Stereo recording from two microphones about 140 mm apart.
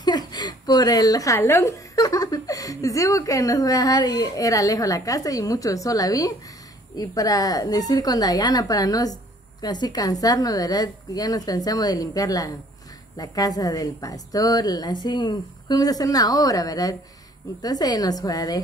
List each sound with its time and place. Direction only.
0.0 s a woman's voice: 30° left (ahead or behind)